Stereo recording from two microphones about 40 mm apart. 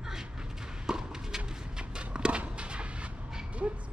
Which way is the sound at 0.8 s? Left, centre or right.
Centre.